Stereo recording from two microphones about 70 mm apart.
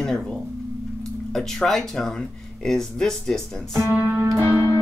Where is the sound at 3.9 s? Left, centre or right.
Centre.